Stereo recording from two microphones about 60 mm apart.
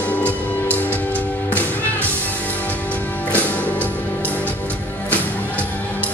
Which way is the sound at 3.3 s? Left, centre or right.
Left.